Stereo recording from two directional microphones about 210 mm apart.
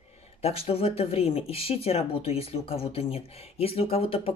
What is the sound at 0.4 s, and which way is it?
Speech, 30° left (ahead or behind).